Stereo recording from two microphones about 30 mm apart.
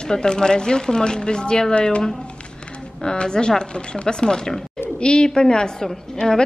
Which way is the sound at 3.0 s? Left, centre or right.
Left.